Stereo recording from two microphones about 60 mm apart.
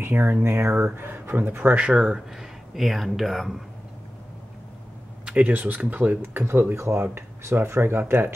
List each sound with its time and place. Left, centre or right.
0.0 s speech: right
1.9 s speech: centre
5.2 s speech: right